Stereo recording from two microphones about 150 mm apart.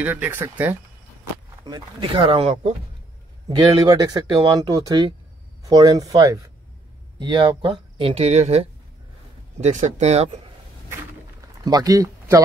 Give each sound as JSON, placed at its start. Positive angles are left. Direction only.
{"t": 0.0, "sound": "speech", "side_deg": -10}
{"t": 1.6, "sound": "speech", "side_deg": -30}
{"t": 3.5, "sound": "speech", "side_deg": -25}
{"t": 11.6, "sound": "speech", "side_deg": -25}